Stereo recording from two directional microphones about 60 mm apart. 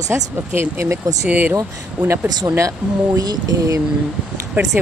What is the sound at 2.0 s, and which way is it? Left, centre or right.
Speech, right.